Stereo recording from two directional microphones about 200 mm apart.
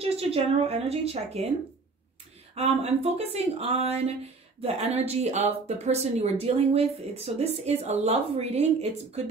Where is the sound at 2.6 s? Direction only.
30° right (ahead or behind).